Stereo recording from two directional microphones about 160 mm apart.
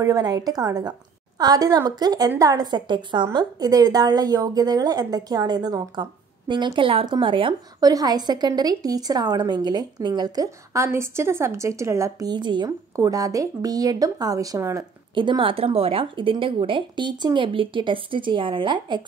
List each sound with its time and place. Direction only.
0.0 s a woman's voice: 25° right (ahead or behind)
15.1 s speech: 30° right (ahead or behind)